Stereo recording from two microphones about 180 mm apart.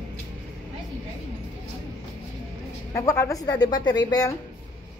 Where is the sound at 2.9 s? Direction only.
15° left (ahead or behind).